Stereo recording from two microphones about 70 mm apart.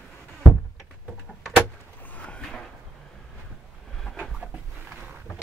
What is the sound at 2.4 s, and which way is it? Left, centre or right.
Drawer open or close, centre.